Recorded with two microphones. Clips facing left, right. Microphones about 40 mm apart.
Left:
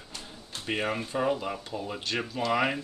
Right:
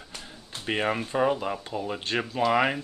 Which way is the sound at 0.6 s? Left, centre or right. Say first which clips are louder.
Right 3 dB; right.